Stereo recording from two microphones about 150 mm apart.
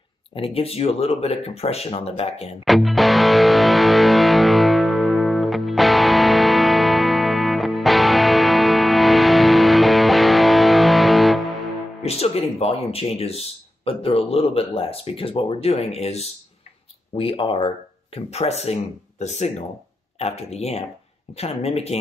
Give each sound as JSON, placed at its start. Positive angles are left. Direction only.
{"t": 0.3, "sound": "speech", "side_deg": 40}
{"t": 2.6, "sound": "music", "side_deg": 0}
{"t": 12.0, "sound": "speech", "side_deg": 45}